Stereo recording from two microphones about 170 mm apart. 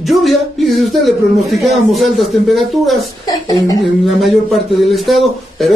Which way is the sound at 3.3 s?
20° left (ahead or behind).